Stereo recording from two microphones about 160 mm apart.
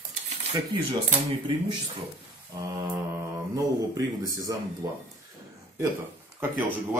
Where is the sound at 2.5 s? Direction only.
20° right (ahead or behind).